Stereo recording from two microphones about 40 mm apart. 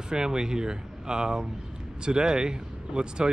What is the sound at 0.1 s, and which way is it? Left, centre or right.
Speech, centre.